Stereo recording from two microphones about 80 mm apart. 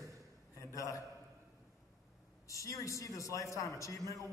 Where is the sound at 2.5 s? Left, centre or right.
Left.